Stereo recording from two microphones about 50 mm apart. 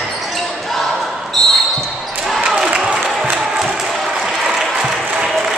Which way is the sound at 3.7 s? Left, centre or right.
Centre.